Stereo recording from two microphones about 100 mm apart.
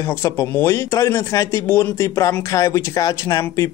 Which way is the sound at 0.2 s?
30° left (ahead or behind).